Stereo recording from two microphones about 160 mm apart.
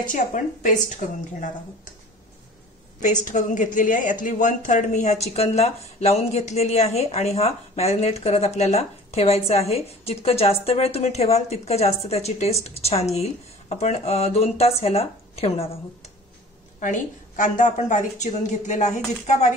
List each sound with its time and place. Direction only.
0.0 s a woman's voice: 55° left (ahead or behind)
3.3 s a woman's voice: 50° left (ahead or behind)
16.8 s a woman's voice: 50° left (ahead or behind)